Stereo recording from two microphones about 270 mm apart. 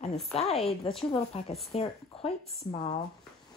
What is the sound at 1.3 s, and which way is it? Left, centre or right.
Speech, left.